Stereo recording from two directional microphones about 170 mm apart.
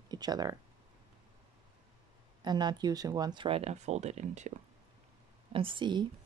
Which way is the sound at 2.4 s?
25° right (ahead or behind).